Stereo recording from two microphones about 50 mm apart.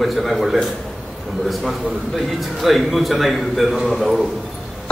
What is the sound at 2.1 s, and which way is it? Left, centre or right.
A man's voice, centre.